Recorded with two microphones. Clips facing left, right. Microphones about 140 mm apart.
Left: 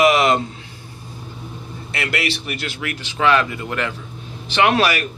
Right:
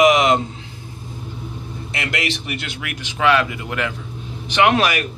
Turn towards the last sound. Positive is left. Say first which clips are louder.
# even
turn(degrees=-15)  # may be behind; listen again after turning